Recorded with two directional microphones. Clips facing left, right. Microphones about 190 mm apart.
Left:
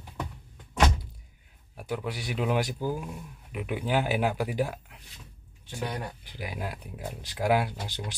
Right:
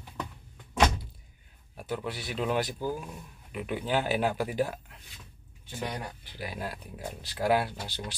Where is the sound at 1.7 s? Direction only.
10° left (ahead or behind).